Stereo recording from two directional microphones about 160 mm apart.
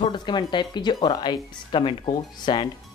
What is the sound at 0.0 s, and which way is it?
Speech, 30° left (ahead or behind).